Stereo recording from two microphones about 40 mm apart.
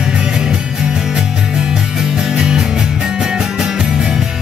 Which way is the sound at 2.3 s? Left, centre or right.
Centre.